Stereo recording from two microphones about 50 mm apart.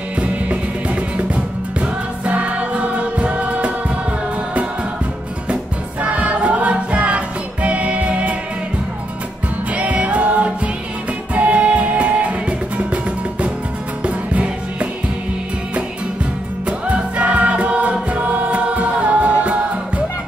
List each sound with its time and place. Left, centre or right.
0.2 s music: right
5.5 s music: right
9.8 s music: right
16.6 s music: right